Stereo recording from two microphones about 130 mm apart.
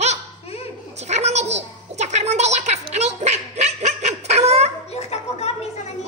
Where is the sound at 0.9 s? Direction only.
60° right (ahead or behind).